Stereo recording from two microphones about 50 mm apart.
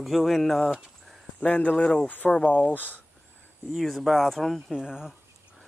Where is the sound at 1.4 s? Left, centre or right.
Left.